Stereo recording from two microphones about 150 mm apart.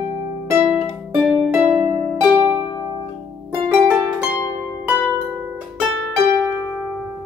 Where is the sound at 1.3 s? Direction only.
5° right (ahead or behind).